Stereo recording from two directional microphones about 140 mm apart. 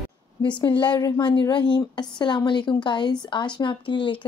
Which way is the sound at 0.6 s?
35° left (ahead or behind).